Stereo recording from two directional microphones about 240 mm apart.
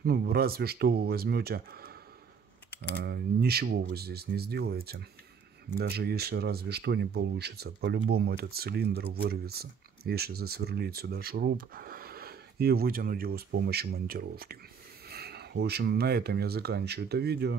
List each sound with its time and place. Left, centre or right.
0.0 s speech: right
3.0 s speech: right